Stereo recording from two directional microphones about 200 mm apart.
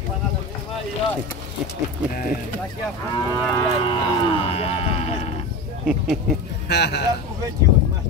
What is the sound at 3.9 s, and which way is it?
Speech, 25° left (ahead or behind).